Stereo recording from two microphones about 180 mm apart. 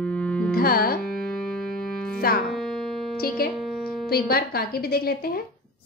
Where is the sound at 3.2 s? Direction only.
55° left (ahead or behind).